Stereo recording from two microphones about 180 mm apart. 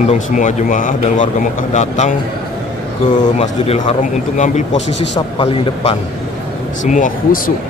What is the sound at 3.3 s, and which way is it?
A man's voice, 35° left (ahead or behind).